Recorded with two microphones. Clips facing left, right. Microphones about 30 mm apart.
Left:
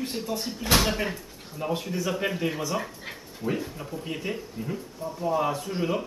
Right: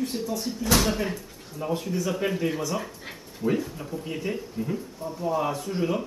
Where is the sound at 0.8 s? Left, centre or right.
Centre.